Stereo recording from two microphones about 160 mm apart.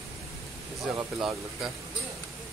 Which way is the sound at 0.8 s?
5° right (ahead or behind).